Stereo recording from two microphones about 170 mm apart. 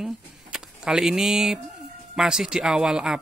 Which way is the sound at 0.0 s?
5° right (ahead or behind).